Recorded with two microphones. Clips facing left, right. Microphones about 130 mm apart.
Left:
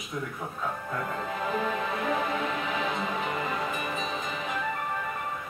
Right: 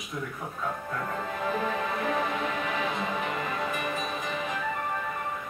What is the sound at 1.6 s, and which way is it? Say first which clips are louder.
Music: even; centre (ahead or behind).